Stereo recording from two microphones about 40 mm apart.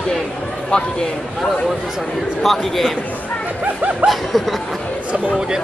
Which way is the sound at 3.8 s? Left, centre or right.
Right.